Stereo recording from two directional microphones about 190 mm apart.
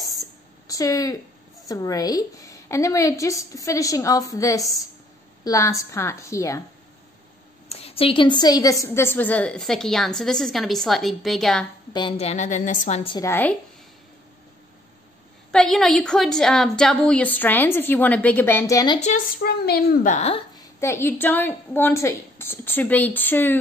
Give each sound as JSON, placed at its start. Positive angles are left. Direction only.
{"t": 0.2, "sound": "a sound", "side_deg": 20}
{"t": 1.7, "sound": "a woman's voice", "side_deg": 20}
{"t": 7.6, "sound": "a woman's voice", "side_deg": 30}
{"t": 11.9, "sound": "a woman's voice", "side_deg": 30}
{"t": 13.1, "sound": "a woman's voice", "side_deg": 15}
{"t": 15.5, "sound": "a woman's voice", "side_deg": 0}
{"t": 18.9, "sound": "a woman's voice", "side_deg": 40}
{"t": 19.4, "sound": "a woman's voice", "side_deg": 55}
{"t": 20.5, "sound": "a woman's voice", "side_deg": 15}